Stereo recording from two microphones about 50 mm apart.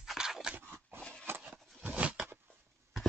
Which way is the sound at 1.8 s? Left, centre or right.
Right.